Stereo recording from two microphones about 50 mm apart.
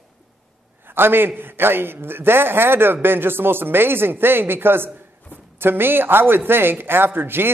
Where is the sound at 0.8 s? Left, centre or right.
Right.